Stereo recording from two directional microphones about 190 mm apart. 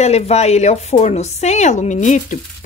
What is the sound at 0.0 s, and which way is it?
Speech, 35° left (ahead or behind).